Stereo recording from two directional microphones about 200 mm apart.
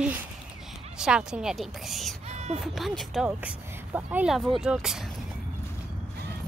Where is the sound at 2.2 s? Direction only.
35° right (ahead or behind).